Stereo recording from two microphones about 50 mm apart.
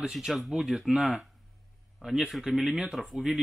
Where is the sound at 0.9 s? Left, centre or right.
Centre.